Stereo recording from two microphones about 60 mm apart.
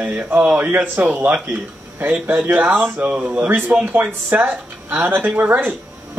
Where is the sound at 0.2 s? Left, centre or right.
Right.